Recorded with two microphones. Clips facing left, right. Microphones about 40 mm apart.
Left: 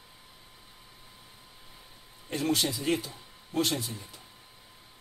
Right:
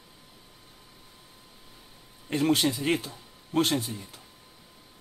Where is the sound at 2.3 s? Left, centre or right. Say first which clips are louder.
Right 4 dB; right.